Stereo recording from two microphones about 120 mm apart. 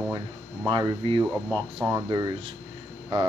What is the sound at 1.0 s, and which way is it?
Speech, 50° right (ahead or behind).